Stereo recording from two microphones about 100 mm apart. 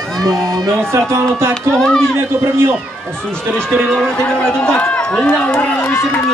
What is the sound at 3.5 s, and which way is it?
A man's voice, 5° left (ahead or behind).